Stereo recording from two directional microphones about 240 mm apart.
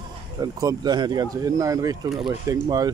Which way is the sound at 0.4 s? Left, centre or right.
Centre.